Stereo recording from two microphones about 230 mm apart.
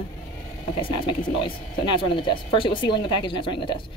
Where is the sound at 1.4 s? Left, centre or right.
Left.